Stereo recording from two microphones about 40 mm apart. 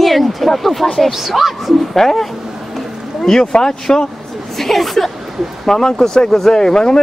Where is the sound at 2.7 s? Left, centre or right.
Centre.